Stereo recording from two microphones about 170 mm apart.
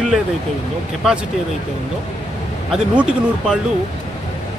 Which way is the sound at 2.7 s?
5° right (ahead or behind).